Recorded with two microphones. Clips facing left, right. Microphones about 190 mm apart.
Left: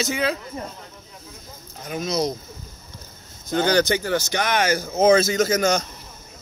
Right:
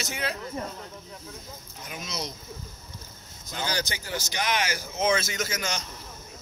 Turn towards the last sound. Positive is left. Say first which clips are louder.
# left 12 dB
turn(degrees=45)  # may be behind; listen again after turning